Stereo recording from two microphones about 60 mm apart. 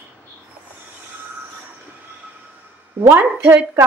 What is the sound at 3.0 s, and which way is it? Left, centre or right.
Speech, right.